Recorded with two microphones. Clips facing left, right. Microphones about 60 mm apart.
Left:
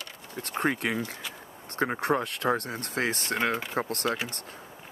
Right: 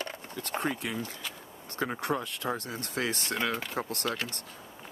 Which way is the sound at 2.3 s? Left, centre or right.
Left.